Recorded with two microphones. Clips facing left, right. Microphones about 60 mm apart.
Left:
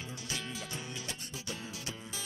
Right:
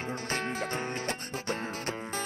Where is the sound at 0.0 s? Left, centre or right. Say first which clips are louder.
Right 8 dB; right.